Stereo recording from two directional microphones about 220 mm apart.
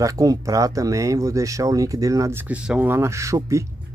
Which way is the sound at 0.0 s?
15° right (ahead or behind).